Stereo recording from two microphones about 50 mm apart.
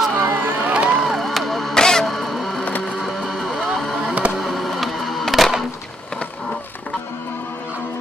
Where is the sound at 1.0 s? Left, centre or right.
Centre.